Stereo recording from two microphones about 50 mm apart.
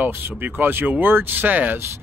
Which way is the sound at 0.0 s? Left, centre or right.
Right.